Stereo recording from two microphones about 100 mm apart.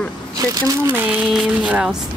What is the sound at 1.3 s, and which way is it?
Speech, 5° right (ahead or behind).